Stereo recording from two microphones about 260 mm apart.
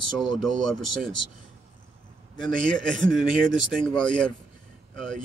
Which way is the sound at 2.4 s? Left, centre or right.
Centre.